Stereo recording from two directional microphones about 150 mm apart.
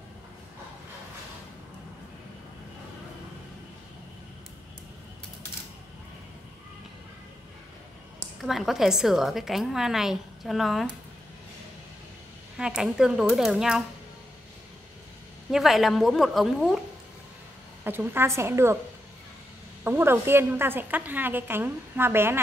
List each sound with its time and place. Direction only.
8.4 s a woman's voice: centre (ahead or behind)
12.5 s a woman's voice: 5° right (ahead or behind)
15.5 s a woman's voice: centre (ahead or behind)
17.8 s a woman's voice: 15° right (ahead or behind)
19.8 s a woman's voice: 15° right (ahead or behind)